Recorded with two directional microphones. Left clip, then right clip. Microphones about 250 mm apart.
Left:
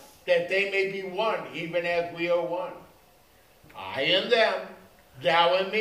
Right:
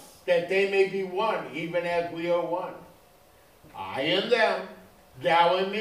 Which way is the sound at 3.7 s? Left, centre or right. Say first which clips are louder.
Left 2 dB; left.